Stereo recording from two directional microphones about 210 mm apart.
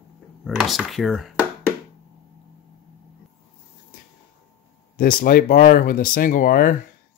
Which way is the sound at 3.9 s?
40° left (ahead or behind).